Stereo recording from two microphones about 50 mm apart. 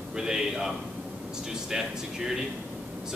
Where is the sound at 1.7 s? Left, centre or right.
Centre.